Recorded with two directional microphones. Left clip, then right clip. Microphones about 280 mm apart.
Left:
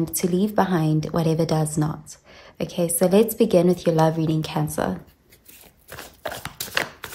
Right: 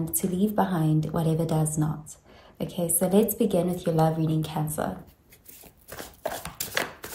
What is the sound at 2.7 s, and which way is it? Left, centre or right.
A woman's voice, left.